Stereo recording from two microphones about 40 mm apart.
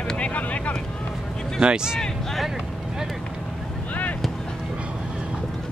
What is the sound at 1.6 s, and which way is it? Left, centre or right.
Speech, right.